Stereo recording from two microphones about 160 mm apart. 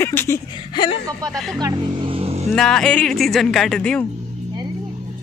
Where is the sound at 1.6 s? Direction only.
25° right (ahead or behind).